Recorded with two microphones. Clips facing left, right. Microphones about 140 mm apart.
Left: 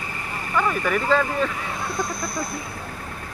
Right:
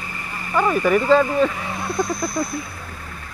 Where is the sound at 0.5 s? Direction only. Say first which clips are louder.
Right 5 dB; 25° right (ahead or behind).